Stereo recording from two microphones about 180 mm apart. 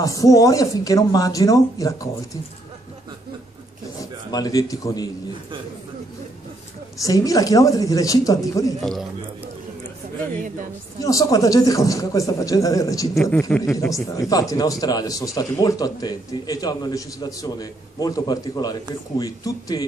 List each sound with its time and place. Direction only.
0.0 s speech: 20° left (ahead or behind)
4.0 s a man's voice: 20° left (ahead or behind)
7.0 s speech: 20° left (ahead or behind)
10.3 s a woman's voice: 50° right (ahead or behind)
11.0 s a man's voice: 20° left (ahead or behind)
14.1 s speech: 20° left (ahead or behind)